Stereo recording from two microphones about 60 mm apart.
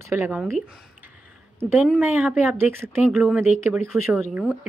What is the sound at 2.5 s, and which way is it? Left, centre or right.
Speech, right.